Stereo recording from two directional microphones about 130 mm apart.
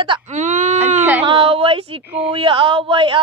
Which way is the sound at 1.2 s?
40° right (ahead or behind).